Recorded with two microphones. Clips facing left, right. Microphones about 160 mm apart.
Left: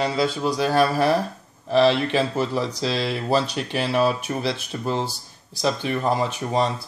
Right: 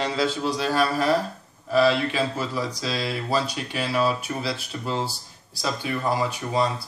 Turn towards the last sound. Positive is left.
turn(degrees=20)  # may be behind; listen again after turning